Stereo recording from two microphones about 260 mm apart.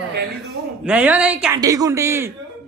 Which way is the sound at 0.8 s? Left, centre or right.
Centre.